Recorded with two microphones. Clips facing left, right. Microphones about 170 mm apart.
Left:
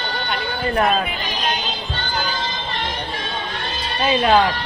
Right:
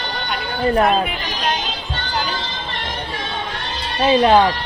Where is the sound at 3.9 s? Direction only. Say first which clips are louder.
Right 3 dB; 25° right (ahead or behind).